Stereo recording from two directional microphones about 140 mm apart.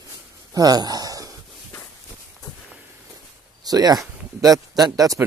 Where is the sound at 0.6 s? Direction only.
30° right (ahead or behind).